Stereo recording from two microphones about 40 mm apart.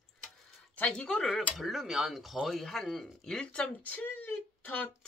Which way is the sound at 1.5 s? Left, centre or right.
Centre.